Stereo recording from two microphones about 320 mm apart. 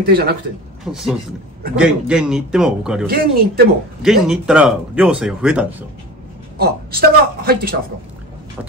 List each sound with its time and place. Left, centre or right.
0.1 s speech: right
0.9 s speech: centre
3.1 s speech: right
4.0 s speech: centre
6.6 s speech: right